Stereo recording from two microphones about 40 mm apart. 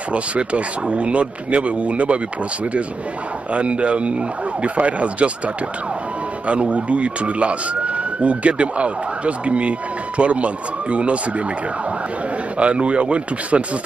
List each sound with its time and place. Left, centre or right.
0.1 s speech: right
3.5 s speech: right
6.4 s speech: right
12.5 s speech: right